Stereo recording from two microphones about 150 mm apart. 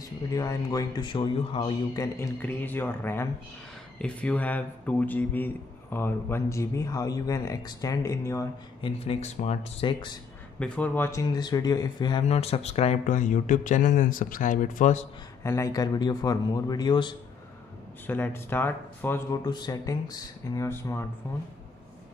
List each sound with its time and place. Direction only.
0.0 s a man's voice: 20° left (ahead or behind)
2.1 s a man's voice: 15° left (ahead or behind)
8.8 s speech: 40° left (ahead or behind)
10.6 s a man's voice: 10° left (ahead or behind); by 12.3 s 30° left (ahead or behind)
12.3 s speech: 45° left (ahead or behind)
15.4 s a man's voice: 20° left (ahead or behind)
18.0 s speech: 15° left (ahead or behind)